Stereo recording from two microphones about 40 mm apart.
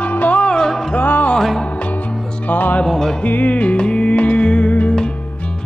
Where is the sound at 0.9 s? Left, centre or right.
Left.